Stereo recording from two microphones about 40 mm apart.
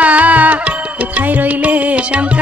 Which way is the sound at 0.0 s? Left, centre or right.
Right.